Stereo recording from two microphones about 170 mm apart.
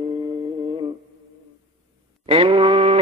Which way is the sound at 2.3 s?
30° right (ahead or behind).